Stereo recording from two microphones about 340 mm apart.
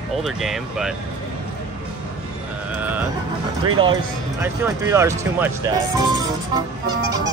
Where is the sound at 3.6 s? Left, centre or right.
Centre.